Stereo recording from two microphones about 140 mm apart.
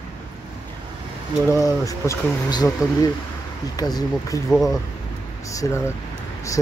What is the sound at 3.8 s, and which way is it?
Speech, 25° left (ahead or behind).